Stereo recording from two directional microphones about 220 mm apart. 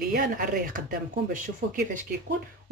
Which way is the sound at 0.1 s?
40° right (ahead or behind).